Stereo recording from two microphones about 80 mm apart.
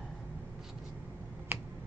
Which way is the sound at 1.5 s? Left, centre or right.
Right.